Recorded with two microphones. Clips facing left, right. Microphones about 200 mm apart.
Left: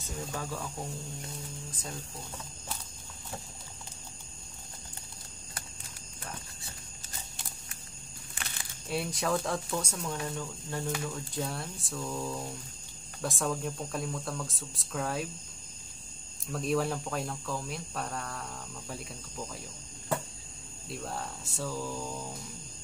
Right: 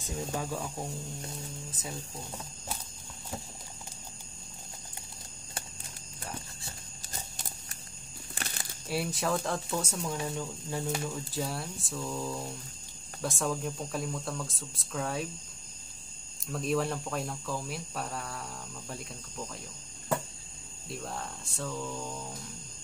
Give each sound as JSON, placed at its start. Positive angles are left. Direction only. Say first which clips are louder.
{"t": 0.0, "sound": "speech", "louder": "right 3 dB", "side_deg": -15}
{"t": 8.4, "sound": "a sound", "louder": "right 4 dB", "side_deg": -35}
{"t": 8.8, "sound": "speech", "louder": "even", "side_deg": 0}
{"t": 16.4, "sound": "speech", "louder": "even", "side_deg": 0}
{"t": 20.9, "sound": "speech", "louder": "left 1 dB", "side_deg": 0}